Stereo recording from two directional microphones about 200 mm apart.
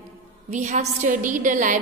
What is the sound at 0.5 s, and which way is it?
A woman's voice, 35° right (ahead or behind).